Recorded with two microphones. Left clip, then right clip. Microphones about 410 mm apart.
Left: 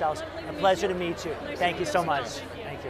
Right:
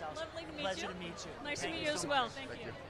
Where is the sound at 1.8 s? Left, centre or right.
Right.